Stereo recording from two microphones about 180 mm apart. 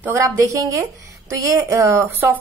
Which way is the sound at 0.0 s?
15° right (ahead or behind).